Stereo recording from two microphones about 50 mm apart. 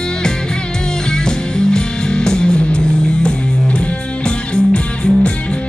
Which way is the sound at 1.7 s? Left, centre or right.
Centre.